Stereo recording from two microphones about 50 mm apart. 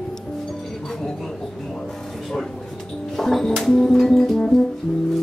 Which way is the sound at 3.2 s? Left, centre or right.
Centre.